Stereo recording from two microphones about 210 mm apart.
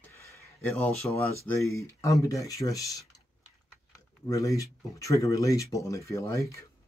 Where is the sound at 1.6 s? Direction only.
15° left (ahead or behind).